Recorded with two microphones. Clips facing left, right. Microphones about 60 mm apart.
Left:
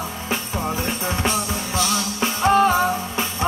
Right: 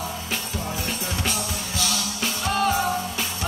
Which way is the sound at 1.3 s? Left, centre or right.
Left.